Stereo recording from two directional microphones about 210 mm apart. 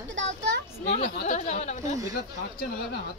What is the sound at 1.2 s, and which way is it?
Speech, 35° left (ahead or behind).